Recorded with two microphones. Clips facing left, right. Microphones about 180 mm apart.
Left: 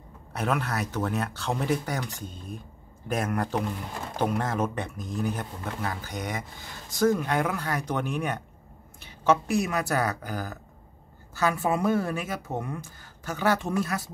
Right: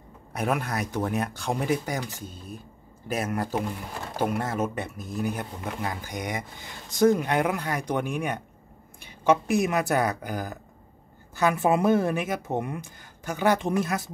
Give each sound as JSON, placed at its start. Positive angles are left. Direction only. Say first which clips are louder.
{"t": 0.3, "sound": "speech", "louder": "right 1 dB", "side_deg": -10}